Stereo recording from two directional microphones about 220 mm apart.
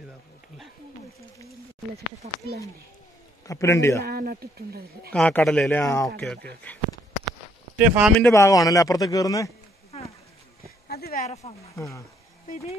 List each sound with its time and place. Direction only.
2.2 s speech: 30° right (ahead or behind)
3.4 s a man's voice: 15° left (ahead or behind)
4.0 s speech: 45° right (ahead or behind)
5.1 s a man's voice: 5° left (ahead or behind)
7.7 s speech: 5° right (ahead or behind)
8.2 s a man's voice: 15° left (ahead or behind)
10.9 s a sound: 45° left (ahead or behind)
11.7 s a man's voice: 15° left (ahead or behind)